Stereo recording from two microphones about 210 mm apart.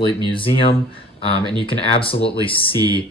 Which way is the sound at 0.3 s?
25° left (ahead or behind).